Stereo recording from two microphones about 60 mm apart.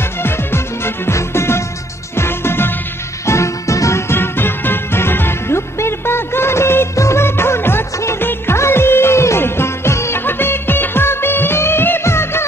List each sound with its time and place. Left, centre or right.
0.2 s music: left
3.3 s music: left
4.1 s music: left